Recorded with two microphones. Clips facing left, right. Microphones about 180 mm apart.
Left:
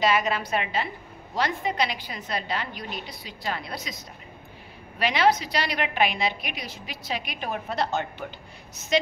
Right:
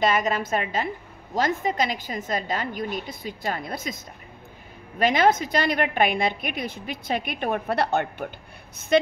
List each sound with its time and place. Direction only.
0.0 s a woman's voice: 45° right (ahead or behind)